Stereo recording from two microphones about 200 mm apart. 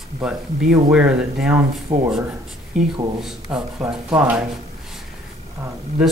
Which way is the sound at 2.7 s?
35° right (ahead or behind).